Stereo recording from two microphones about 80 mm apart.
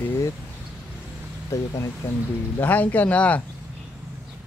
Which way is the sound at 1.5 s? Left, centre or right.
Left.